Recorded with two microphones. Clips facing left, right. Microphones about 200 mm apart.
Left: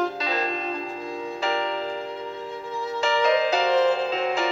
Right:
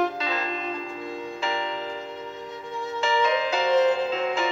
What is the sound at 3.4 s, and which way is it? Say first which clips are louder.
Music: left 1 dB; 40° left (ahead or behind).